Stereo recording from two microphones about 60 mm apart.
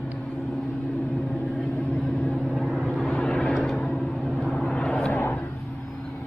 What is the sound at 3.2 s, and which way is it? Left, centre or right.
Vehicle, centre.